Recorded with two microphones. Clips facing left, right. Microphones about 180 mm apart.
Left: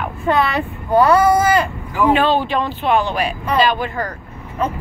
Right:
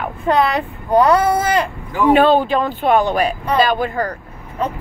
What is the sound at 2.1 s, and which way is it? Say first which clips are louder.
Speech: right 5 dB; 45° right (ahead or behind).